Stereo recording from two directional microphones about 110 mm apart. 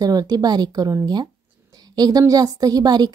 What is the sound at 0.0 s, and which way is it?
A woman's voice, 35° right (ahead or behind).